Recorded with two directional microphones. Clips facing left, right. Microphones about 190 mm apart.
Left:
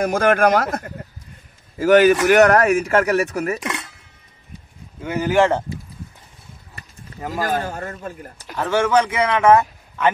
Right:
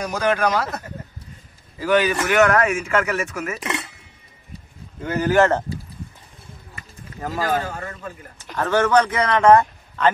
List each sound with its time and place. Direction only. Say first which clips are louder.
0.0 s speech: left 5 dB; 50° left (ahead or behind)
3.5 s a sound: left 1 dB; centre (ahead or behind)
5.0 s speech: even; 10° left (ahead or behind)
7.2 s speech: left 1 dB; 10° left (ahead or behind)
7.6 s speech: left 3 dB; 40° left (ahead or behind)
8.5 s speech: even; 10° left (ahead or behind)